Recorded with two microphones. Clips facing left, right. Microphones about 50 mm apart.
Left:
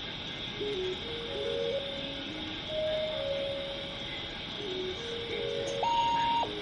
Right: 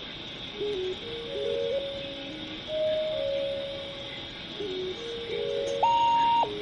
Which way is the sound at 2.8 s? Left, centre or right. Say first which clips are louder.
Right 5 dB; centre.